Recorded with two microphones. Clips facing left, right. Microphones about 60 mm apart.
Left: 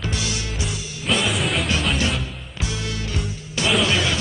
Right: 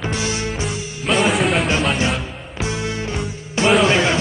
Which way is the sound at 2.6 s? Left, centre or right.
Right.